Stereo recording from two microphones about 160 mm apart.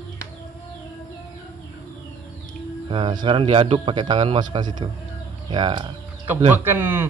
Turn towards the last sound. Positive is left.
turn(degrees=-15)  # may be behind; listen again after turning